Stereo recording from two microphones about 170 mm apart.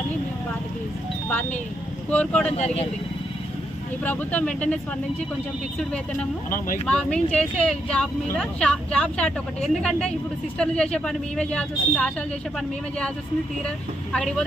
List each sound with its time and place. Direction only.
2.0 s speech: 5° left (ahead or behind)
2.5 s speech: 40° left (ahead or behind)
4.0 s speech: 10° left (ahead or behind)
6.9 s speech: 5° left (ahead or behind)
14.1 s speech: 5° left (ahead or behind)